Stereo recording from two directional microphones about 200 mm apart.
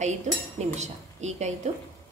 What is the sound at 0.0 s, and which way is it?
A woman's voice, 35° right (ahead or behind).